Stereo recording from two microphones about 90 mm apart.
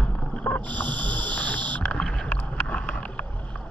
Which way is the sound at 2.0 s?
10° left (ahead or behind).